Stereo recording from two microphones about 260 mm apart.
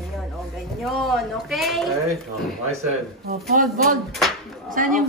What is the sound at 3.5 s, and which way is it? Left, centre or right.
Speech, right.